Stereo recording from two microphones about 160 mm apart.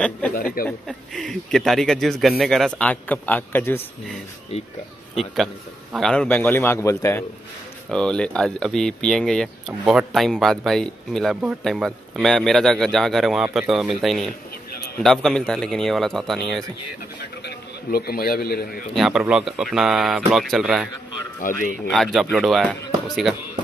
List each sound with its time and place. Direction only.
0.7 s a man's voice: 5° left (ahead or behind)
5.1 s a man's voice: centre (ahead or behind); by 7.2 s 15° left (ahead or behind)
7.9 s speech: 5° left (ahead or behind)
17.2 s a man's voice: 90° left; by 18.9 s 70° left (ahead or behind)
18.9 s speech: 5° right (ahead or behind)
21.4 s a man's voice: 55° left (ahead or behind)
21.8 s speech: centre (ahead or behind)